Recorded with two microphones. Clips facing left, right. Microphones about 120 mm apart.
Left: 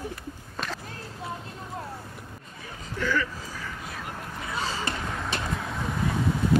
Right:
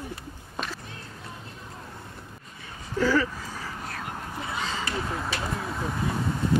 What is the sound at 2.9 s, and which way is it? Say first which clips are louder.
Speech: right 5 dB; 35° right (ahead or behind).